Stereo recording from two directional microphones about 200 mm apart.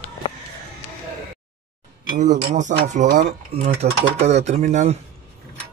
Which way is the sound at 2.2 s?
40° right (ahead or behind).